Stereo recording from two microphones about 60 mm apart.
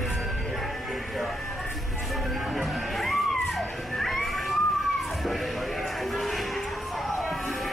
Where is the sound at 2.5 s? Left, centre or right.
Centre.